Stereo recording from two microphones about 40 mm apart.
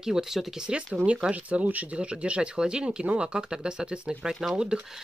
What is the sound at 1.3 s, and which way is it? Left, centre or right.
Speech, right.